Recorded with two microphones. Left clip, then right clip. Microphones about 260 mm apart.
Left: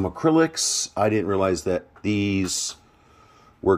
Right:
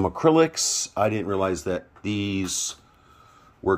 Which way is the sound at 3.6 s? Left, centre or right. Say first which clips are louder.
Left 3 dB; centre.